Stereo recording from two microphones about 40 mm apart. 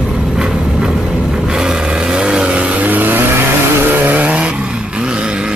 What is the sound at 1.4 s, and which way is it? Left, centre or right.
Vehicle, centre.